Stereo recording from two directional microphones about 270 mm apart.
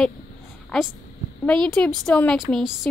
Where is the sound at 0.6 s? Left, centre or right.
Centre.